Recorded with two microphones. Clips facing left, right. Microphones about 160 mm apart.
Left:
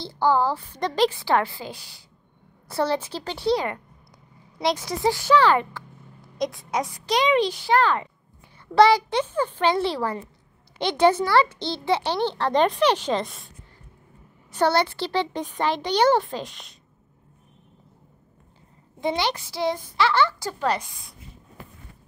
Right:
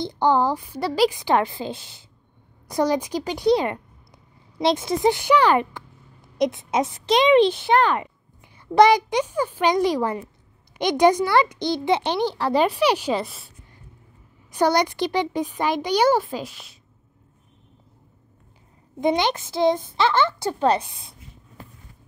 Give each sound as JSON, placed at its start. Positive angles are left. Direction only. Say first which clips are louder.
{"t": 0.0, "sound": "a woman's voice", "louder": "right 2 dB", "side_deg": -20}
{"t": 14.5, "sound": "a child's voice", "louder": "right 1 dB", "side_deg": -15}
{"t": 18.9, "sound": "a woman's voice", "louder": "right 4 dB", "side_deg": -20}